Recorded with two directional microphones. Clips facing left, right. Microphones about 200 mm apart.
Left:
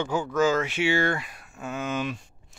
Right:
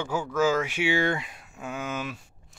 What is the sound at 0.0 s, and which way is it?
Speech, 5° right (ahead or behind).